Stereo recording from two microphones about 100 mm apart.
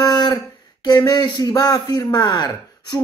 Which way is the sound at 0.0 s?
45° left (ahead or behind).